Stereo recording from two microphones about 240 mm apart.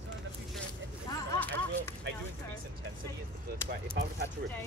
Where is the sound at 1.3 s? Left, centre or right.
Centre.